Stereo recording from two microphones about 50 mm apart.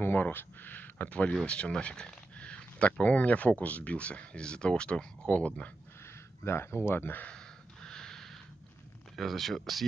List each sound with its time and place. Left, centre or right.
0.0 s speech: left
6.4 s speech: left
7.3 s snort: centre
9.1 s speech: centre